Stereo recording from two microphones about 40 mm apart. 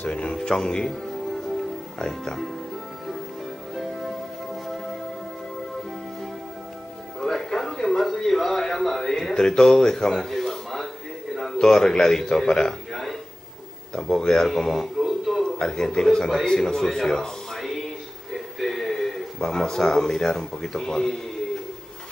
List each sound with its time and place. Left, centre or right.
0.1 s speech: left; by 2.5 s centre
3.7 s music: centre
7.2 s music: centre
10.1 s a sound: centre
11.6 s speech: centre
13.9 s speech: centre
15.0 s a sound: centre
15.4 s a man's voice: centre
18.6 s a sound: centre
19.4 s speech: centre